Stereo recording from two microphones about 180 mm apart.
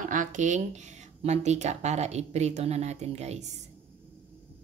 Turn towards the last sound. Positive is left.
turn(degrees=-40)  # may be behind; listen again after turning